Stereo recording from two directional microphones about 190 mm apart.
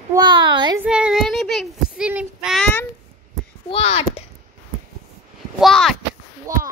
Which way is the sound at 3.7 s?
30° left (ahead or behind).